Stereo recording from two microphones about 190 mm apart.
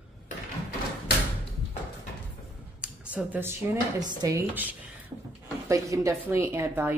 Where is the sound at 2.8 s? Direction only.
5° right (ahead or behind).